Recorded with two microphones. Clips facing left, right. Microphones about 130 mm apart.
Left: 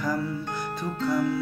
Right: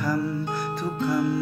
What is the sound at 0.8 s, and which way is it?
Music, 10° right (ahead or behind).